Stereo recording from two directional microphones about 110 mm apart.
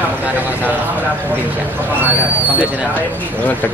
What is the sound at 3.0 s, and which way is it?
Speech, 15° left (ahead or behind).